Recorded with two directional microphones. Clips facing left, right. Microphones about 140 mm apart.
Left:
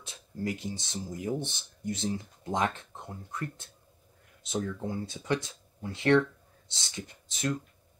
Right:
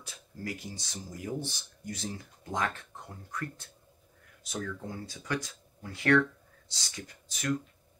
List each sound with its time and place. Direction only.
0.0 s speech: 25° left (ahead or behind)